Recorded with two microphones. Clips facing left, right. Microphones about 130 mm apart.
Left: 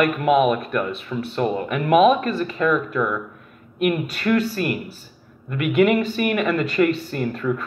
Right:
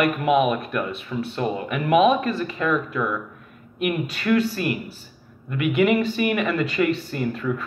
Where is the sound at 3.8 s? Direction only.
45° left (ahead or behind).